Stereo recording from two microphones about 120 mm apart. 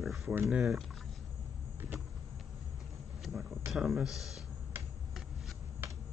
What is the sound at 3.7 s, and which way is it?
Speech, 5° right (ahead or behind).